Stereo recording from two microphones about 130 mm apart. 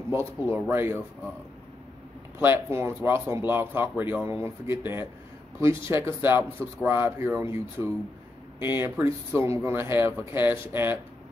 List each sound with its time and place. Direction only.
0.1 s speech: 20° right (ahead or behind)
2.3 s speech: 15° right (ahead or behind)